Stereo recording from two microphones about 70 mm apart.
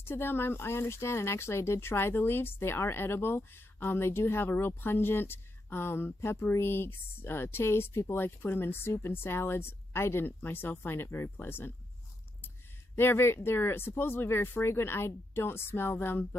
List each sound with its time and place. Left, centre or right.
0.0 s speech: left
12.9 s speech: left